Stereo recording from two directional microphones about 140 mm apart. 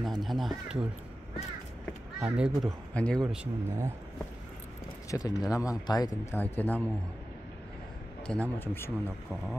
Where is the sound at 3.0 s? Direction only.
5° left (ahead or behind).